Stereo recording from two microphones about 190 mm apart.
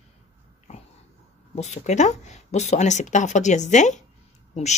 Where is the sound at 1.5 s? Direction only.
40° left (ahead or behind).